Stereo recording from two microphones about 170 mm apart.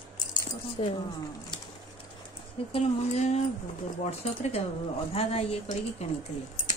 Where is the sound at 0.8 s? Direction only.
35° left (ahead or behind).